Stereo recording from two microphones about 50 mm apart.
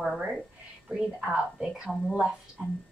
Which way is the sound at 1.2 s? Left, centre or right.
Right.